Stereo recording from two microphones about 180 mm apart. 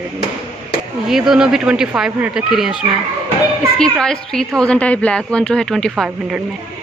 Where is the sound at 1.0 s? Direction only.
Centre (ahead or behind).